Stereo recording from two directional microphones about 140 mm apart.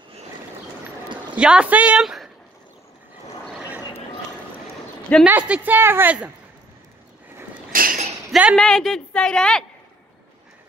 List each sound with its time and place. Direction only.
1.3 s speech: 10° right (ahead or behind)
5.2 s a woman's voice: 10° right (ahead or behind)
7.7 s a sound: 80° right
8.3 s a woman's voice: 5° right (ahead or behind)